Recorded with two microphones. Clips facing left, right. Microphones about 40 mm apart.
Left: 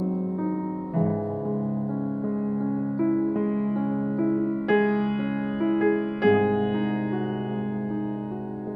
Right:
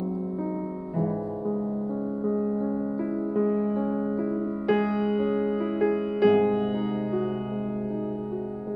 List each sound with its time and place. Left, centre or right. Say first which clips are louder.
3.0 s music: left 4 dB; left
4.6 s music: left 1 dB; left
5.6 s music: left 2 dB; centre
5.9 s music: right 2 dB; left